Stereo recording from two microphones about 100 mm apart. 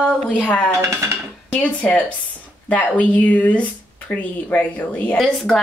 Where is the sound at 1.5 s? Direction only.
15° left (ahead or behind).